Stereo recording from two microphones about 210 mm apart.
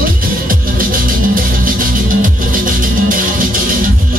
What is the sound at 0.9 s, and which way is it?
Music, 40° right (ahead or behind).